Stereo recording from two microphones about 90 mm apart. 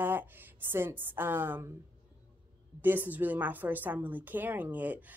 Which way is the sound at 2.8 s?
20° right (ahead or behind).